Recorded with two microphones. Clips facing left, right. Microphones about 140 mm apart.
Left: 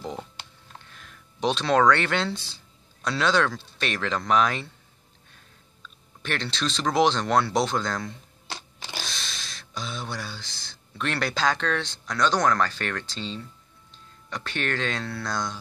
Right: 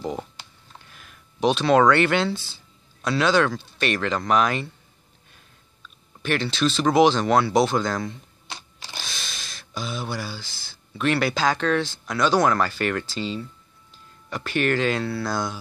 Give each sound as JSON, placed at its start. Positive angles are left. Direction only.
{"t": 0.8, "sound": "speech", "side_deg": -5}
{"t": 6.2, "sound": "speech", "side_deg": -5}